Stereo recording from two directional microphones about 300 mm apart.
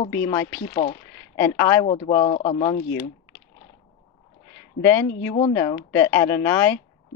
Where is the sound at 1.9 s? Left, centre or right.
Centre.